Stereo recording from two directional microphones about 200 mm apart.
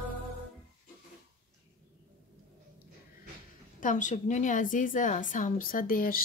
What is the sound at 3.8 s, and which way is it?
A woman's voice, 40° left (ahead or behind).